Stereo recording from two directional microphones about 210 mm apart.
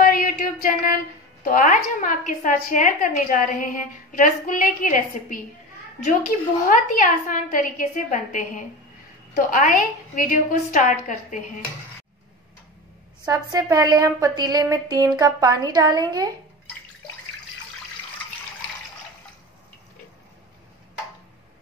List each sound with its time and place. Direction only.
0.0 s a sound: 40° left (ahead or behind)
1.4 s a woman's voice: 40° left (ahead or behind)
13.3 s a woman's voice: 15° right (ahead or behind)